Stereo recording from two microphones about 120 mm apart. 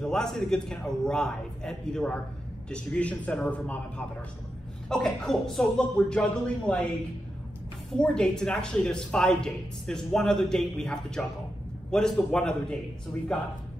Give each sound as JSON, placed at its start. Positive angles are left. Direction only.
{"t": 0.0, "sound": "a man's voice", "side_deg": 5}
{"t": 4.8, "sound": "speech", "side_deg": 5}
{"t": 8.0, "sound": "a man's voice", "side_deg": 5}